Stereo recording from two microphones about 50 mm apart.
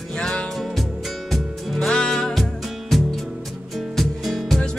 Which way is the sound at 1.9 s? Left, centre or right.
Centre.